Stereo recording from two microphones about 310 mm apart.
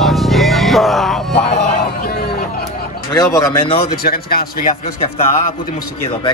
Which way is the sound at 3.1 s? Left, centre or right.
Centre.